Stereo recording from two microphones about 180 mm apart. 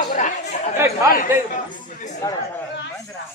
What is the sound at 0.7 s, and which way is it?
Speech, 15° right (ahead or behind).